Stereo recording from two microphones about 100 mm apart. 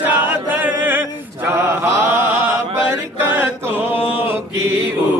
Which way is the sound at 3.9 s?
65° left (ahead or behind).